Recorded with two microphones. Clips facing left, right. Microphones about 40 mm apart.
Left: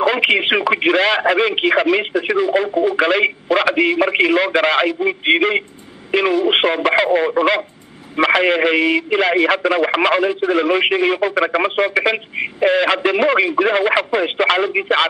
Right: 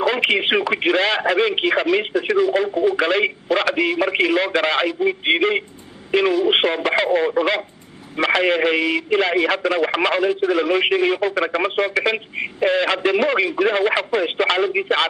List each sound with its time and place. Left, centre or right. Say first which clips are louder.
0.0 s speech: left 3 dB; centre
3.7 s speech: left 4 dB; left
4.0 s speech: left 3 dB; centre